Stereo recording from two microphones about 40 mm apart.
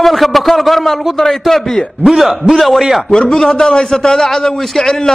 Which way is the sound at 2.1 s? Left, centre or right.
Centre.